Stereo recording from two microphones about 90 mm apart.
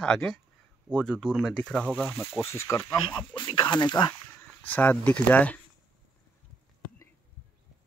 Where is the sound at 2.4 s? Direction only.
30° left (ahead or behind).